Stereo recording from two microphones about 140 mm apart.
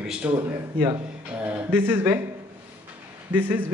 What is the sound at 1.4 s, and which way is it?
Speech, 15° right (ahead or behind).